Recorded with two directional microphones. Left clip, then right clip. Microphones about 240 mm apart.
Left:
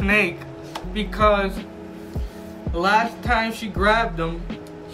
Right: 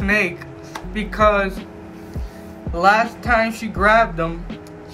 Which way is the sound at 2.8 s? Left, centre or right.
Centre.